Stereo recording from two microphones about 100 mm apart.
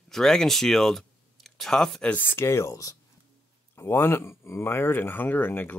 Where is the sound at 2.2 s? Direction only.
25° left (ahead or behind).